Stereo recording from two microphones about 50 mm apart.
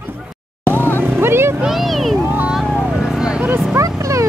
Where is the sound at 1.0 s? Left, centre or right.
Right.